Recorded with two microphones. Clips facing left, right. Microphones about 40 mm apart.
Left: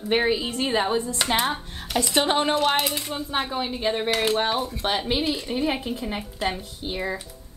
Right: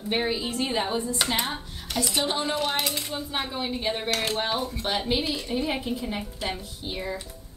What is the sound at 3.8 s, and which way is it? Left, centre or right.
A woman's voice, left.